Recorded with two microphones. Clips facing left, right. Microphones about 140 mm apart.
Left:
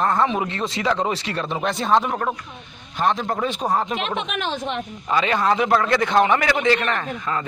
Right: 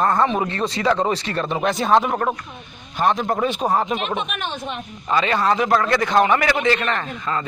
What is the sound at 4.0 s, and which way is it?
Speech, 90° left.